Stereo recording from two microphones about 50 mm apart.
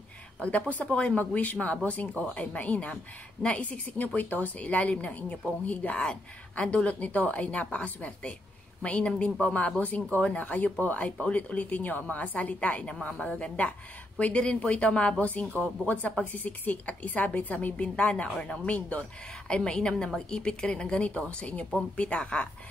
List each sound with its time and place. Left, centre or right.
0.4 s a woman's voice: left